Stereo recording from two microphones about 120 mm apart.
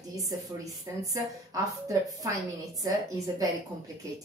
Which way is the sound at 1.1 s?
30° right (ahead or behind).